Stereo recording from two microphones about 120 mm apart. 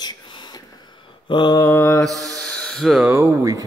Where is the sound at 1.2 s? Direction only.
40° left (ahead or behind).